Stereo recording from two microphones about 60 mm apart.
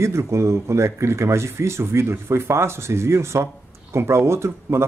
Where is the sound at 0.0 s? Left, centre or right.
Right.